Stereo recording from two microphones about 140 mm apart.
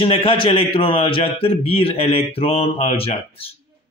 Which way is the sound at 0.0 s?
40° left (ahead or behind).